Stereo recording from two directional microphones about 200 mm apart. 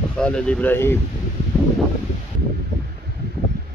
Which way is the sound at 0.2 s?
5° left (ahead or behind).